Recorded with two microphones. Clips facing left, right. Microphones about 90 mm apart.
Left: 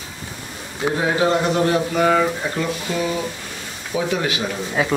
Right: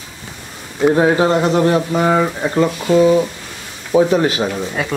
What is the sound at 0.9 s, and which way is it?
Speech, 35° right (ahead or behind).